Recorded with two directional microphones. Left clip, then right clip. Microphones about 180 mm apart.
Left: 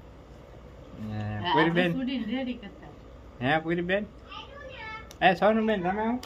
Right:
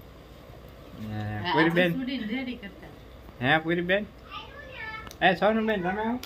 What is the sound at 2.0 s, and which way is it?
Speech, 5° left (ahead or behind).